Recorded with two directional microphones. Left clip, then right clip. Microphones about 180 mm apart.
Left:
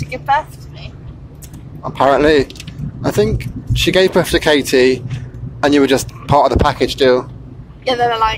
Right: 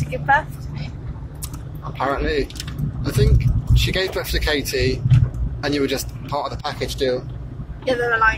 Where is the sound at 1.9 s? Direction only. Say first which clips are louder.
Left 11 dB; 45° left (ahead or behind).